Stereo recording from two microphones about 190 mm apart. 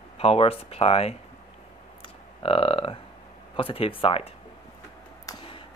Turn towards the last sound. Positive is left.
turn(degrees=25)  # may be behind; listen again after turning